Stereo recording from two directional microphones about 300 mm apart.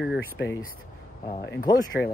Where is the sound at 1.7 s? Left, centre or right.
Centre.